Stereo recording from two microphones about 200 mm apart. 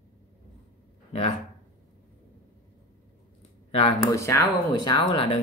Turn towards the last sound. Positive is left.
turn(degrees=25)  # may be behind; listen again after turning